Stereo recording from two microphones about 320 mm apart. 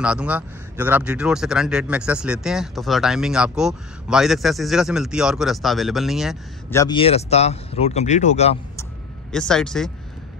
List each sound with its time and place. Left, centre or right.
0.0 s speech: centre
6.8 s speech: centre
9.3 s speech: centre